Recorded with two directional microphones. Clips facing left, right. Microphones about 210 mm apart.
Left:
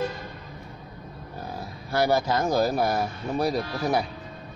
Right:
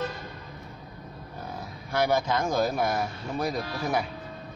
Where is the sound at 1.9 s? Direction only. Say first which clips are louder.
Left 2 dB; 35° left (ahead or behind).